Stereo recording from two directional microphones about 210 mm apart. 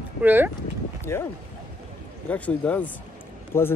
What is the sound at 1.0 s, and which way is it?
Speech, 10° left (ahead or behind).